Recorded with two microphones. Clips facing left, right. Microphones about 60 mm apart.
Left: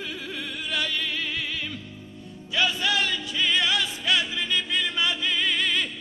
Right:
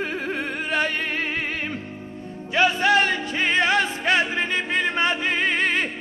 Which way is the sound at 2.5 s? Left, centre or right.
Right.